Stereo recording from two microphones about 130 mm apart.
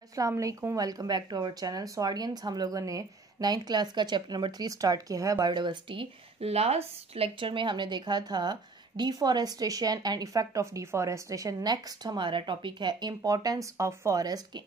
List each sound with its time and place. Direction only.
0.1 s a woman's voice: 25° right (ahead or behind)